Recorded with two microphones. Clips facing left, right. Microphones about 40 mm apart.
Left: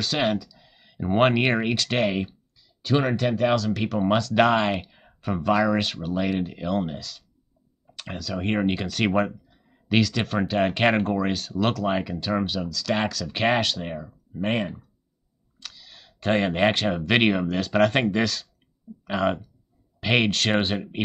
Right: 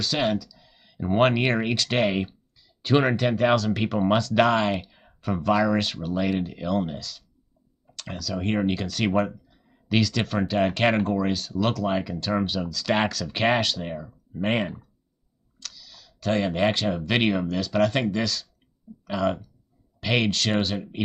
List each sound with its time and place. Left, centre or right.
0.0 s speech: centre
0.4 s speech: centre
3.7 s speech: centre
4.0 s speech: centre
12.6 s speech: centre
13.1 s speech: centre
15.6 s clicking: left
16.7 s speech: centre
17.1 s speech: left
19.0 s speech: left